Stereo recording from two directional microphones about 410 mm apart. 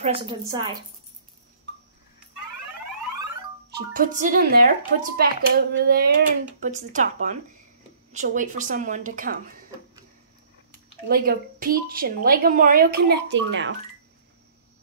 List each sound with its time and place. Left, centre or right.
0.3 s speech: centre
3.7 s speech: centre
11.1 s speech: right